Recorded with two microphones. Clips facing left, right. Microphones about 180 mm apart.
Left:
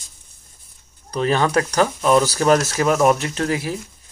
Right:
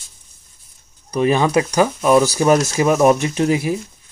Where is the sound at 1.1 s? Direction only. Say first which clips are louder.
Right 3 dB; 10° right (ahead or behind).